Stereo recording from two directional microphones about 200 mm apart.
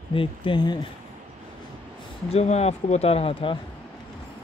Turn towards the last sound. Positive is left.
turn(degrees=25)  # may be behind; listen again after turning